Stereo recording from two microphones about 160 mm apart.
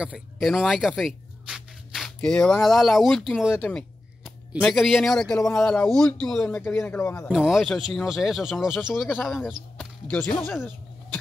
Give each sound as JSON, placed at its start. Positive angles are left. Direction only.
{"t": 0.0, "sound": "speech", "side_deg": 0}
{"t": 3.5, "sound": "speech", "side_deg": 10}
{"t": 7.2, "sound": "speech", "side_deg": 0}
{"t": 9.8, "sound": "speech", "side_deg": 10}